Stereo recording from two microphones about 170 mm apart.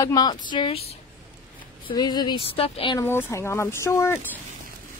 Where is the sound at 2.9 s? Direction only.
15° left (ahead or behind).